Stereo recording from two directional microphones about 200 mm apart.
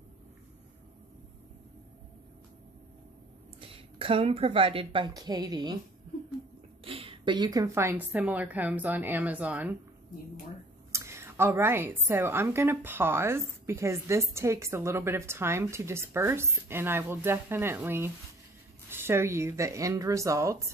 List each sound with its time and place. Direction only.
3.6 s a woman's voice: 30° right (ahead or behind)
6.8 s a woman's voice: 30° right (ahead or behind); by 9.8 s 5° right (ahead or behind)
10.9 s a woman's voice: 15° right (ahead or behind)